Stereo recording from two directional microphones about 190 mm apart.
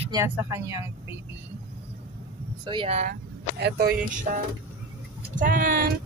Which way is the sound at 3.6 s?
55° right (ahead or behind).